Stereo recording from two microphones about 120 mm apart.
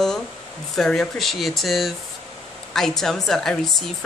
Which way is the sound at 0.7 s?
5° left (ahead or behind).